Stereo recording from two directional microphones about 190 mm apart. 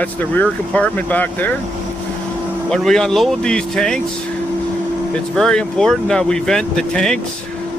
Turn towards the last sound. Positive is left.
turn(degrees=5)  # may be behind; listen again after turning